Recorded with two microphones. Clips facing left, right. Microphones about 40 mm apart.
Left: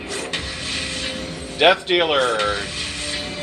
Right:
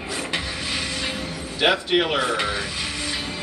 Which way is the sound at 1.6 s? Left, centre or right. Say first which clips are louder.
Left 4 dB; left.